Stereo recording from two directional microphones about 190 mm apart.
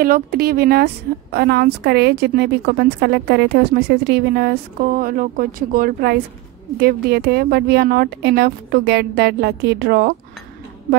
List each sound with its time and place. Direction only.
0.0 s a woman's voice: 50° right (ahead or behind)